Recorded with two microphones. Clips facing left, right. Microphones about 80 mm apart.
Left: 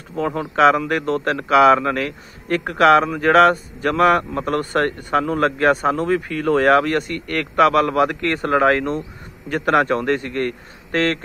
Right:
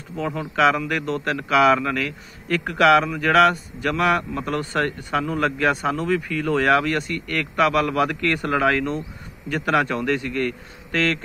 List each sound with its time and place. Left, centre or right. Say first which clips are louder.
0.1 s speech: left 4 dB; left